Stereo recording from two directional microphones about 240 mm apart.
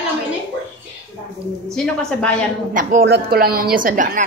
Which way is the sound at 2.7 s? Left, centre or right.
Right.